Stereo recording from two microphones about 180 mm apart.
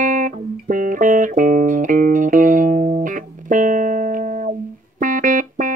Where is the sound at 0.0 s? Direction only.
45° right (ahead or behind).